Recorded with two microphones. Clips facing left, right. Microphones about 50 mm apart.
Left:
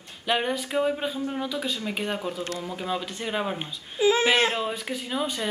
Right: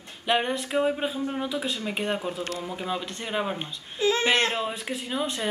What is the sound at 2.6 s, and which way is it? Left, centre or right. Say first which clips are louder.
Speech: left 1 dB; centre.